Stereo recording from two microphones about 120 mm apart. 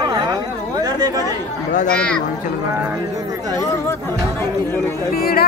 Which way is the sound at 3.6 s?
25° left (ahead or behind).